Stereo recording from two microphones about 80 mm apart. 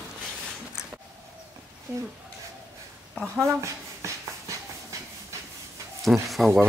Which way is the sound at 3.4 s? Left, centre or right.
Right.